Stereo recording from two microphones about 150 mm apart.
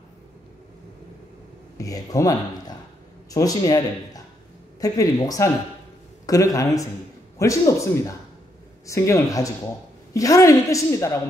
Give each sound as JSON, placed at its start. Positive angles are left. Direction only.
{"t": 1.8, "sound": "a woman's voice", "side_deg": 20}